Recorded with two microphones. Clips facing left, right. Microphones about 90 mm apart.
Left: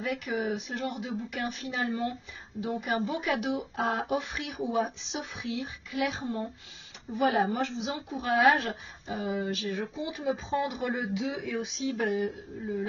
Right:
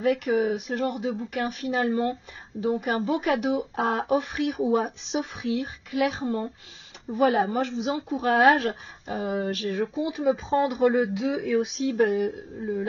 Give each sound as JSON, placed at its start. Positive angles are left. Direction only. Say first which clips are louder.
{"t": 0.0, "sound": "a woman's voice", "louder": "right 8 dB", "side_deg": -50}